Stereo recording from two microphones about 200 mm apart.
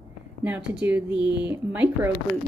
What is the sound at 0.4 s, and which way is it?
Speech, 5° right (ahead or behind).